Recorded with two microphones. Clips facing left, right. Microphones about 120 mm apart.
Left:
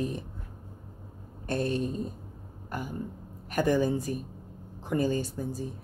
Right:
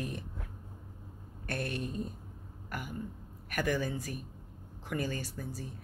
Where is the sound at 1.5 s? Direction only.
25° left (ahead or behind).